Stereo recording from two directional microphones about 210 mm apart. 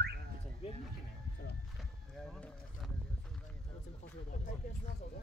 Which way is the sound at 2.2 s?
5° left (ahead or behind).